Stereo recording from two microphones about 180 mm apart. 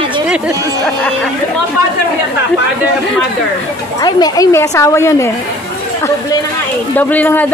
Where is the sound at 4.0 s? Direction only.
20° left (ahead or behind).